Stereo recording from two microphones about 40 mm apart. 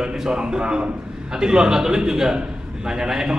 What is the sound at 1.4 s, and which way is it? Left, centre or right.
Speech, centre.